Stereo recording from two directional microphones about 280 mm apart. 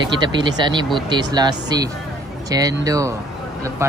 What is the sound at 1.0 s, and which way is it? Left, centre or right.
Speech, centre.